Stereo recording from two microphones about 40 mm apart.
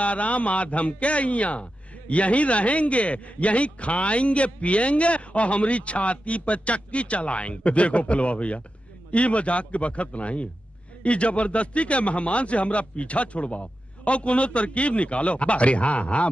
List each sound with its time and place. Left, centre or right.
0.0 s a man's voice: left